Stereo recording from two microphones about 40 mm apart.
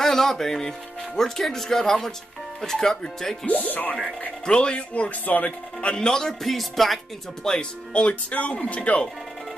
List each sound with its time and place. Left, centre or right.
0.0 s speech: centre
3.4 s speech: left
4.5 s speech: left
5.8 s speech: left; by 7.0 s centre
7.5 s speech: centre
7.9 s speech: left